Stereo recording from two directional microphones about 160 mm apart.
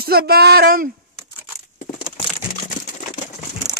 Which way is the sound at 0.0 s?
70° right (ahead or behind).